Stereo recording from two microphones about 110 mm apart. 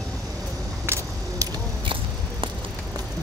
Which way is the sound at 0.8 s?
25° right (ahead or behind).